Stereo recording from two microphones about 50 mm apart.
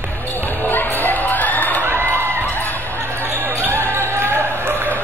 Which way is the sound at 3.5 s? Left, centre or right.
Right.